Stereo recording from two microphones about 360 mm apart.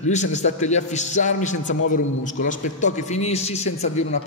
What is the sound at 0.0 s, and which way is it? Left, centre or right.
A man's voice, centre.